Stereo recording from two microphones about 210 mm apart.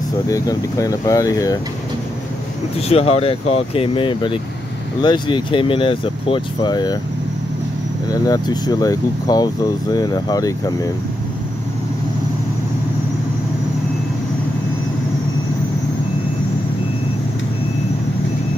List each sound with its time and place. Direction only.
0.3 s speech: 15° left (ahead or behind)
2.9 s speech: 30° left (ahead or behind)
8.1 s speech: 20° left (ahead or behind)